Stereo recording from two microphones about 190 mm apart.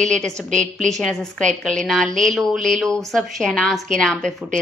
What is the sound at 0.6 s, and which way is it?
Speech, 40° right (ahead or behind).